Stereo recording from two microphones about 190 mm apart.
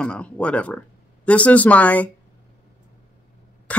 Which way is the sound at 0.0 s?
5° left (ahead or behind).